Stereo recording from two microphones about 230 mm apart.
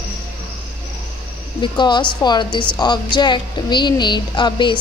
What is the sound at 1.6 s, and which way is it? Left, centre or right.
A woman's voice, centre.